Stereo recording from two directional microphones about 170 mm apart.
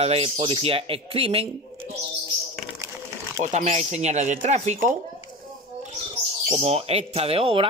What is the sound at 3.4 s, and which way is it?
Speech, 45° right (ahead or behind).